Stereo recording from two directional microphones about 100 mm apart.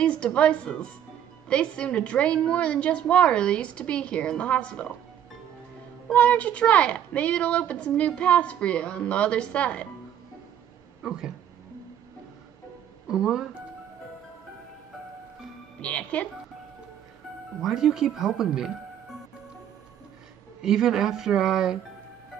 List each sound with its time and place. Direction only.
0.0 s a woman's voice: 10° left (ahead or behind)
6.0 s a woman's voice: 15° left (ahead or behind)
11.0 s speech: 5° right (ahead or behind)
13.1 s speech: 5° right (ahead or behind)
15.8 s a woman's voice: 10° left (ahead or behind)
17.6 s speech: 5° right (ahead or behind)
20.6 s speech: 5° right (ahead or behind)